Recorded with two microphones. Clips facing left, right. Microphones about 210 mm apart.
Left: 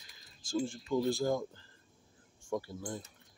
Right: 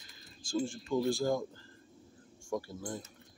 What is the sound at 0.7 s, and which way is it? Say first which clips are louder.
Speech: even; 20° left (ahead or behind).